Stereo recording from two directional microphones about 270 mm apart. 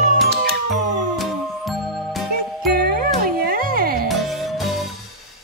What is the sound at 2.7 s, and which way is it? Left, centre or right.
Music, right.